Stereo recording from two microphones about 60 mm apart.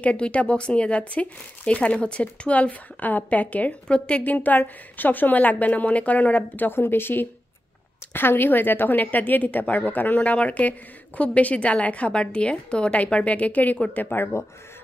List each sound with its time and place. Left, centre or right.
0.0 s speech: left
3.8 s a woman's voice: centre
4.2 s speech: left